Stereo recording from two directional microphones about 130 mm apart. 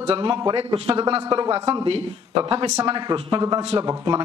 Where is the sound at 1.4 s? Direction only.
25° right (ahead or behind).